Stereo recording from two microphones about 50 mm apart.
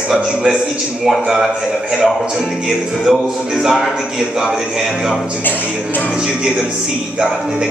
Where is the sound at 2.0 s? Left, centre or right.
Centre.